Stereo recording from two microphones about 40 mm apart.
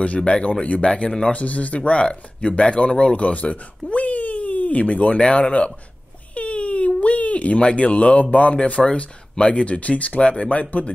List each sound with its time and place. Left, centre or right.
0.0 s speech: left